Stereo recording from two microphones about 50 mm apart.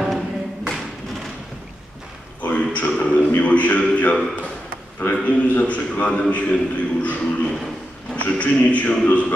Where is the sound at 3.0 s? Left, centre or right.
Left.